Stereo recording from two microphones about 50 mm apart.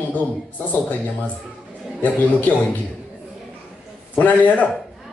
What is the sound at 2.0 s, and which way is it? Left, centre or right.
Speech, left.